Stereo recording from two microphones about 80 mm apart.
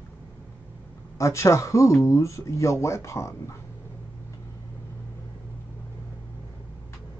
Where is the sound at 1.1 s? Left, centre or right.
Left.